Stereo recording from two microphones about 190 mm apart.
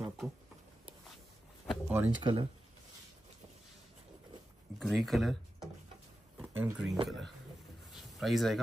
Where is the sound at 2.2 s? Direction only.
25° right (ahead or behind).